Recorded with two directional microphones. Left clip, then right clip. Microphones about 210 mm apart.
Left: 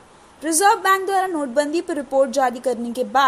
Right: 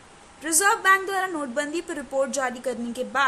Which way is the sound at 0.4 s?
10° left (ahead or behind).